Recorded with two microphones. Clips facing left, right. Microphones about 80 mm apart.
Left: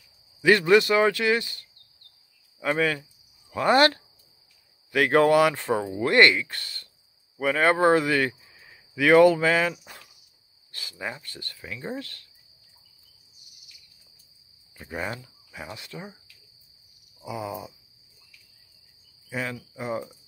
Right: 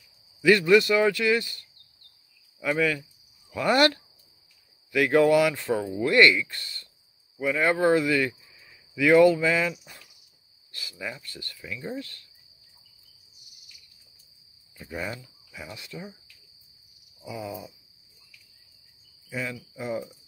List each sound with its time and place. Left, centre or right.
0.4 s speech: left
14.8 s speech: left
17.2 s a sound: left
19.3 s speech: left